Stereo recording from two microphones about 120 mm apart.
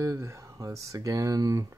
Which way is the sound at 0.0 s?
25° right (ahead or behind).